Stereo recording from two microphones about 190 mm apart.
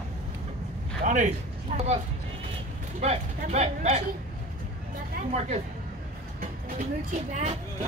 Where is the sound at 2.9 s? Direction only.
40° right (ahead or behind).